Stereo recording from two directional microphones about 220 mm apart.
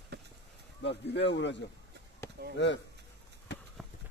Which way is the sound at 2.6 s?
55° left (ahead or behind).